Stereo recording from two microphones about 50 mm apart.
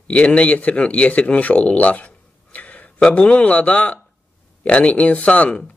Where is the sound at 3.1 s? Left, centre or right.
Left.